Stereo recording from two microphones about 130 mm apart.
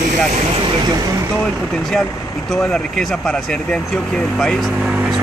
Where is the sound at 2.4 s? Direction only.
5° left (ahead or behind).